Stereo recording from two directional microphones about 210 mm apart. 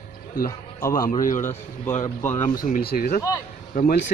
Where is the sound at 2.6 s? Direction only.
45° left (ahead or behind).